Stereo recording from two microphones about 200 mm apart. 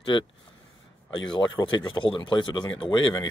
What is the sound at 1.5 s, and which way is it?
Speech, 20° left (ahead or behind).